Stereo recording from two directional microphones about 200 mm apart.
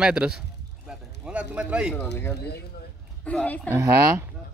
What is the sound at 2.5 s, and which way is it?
Speech, 55° left (ahead or behind).